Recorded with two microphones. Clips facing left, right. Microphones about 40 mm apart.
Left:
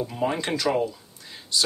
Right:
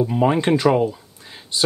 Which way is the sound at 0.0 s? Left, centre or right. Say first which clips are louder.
Right 8 dB; right.